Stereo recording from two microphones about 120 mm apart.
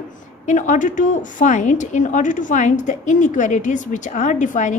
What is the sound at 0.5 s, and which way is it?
A woman's voice, 90° left.